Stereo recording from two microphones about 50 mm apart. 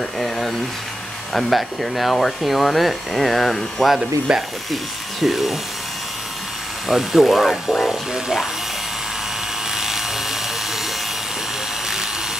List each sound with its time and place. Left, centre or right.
0.2 s a sound: centre
1.3 s speech: centre
4.3 s speech: centre
5.2 s speech: centre
6.9 s speech: centre
9.8 s electric toothbrush: centre